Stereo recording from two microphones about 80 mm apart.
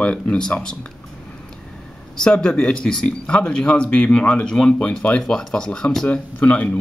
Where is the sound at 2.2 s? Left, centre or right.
Centre.